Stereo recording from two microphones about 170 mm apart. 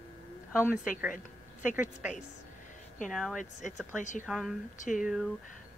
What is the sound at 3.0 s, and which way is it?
A woman's voice, centre (ahead or behind).